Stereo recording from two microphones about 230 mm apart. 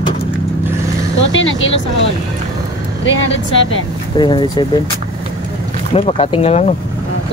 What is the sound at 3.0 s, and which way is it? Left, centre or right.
Speech, left.